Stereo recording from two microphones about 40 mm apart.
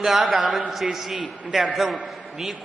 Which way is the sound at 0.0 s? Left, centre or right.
Centre.